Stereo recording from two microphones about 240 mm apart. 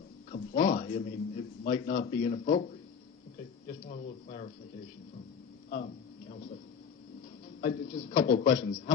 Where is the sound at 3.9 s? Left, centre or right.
Left.